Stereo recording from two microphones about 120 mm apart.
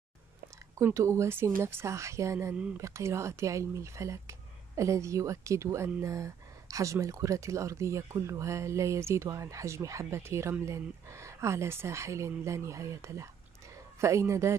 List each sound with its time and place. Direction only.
0.7 s speech: 25° right (ahead or behind)